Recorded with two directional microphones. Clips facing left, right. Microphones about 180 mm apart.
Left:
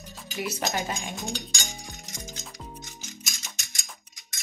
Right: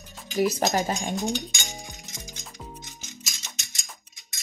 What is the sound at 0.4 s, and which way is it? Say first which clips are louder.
Speech: right 7 dB; 35° right (ahead or behind).